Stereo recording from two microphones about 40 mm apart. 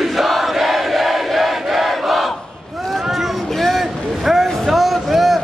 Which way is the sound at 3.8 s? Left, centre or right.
Centre.